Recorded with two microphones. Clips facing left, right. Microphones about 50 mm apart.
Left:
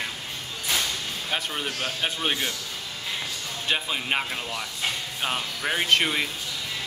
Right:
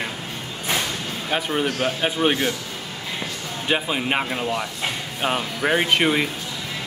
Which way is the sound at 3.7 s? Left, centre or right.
Centre.